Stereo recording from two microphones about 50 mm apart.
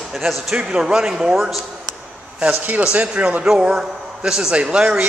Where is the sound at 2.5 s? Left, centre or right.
Right.